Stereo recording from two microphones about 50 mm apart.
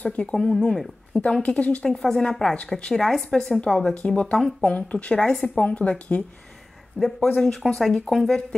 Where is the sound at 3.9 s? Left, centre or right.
Left.